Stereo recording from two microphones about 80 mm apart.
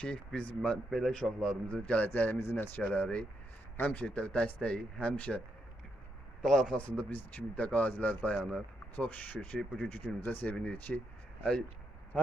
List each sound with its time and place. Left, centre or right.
0.0 s speech: centre
6.4 s speech: centre
7.1 s speech: centre